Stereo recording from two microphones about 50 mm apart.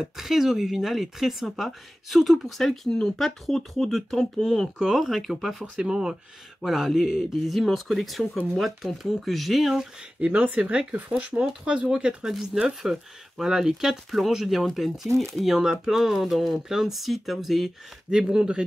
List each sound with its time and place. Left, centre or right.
0.0 s speech: centre
4.7 s speech: centre
5.0 s speech: centre
6.6 s speech: centre
10.2 s speech: right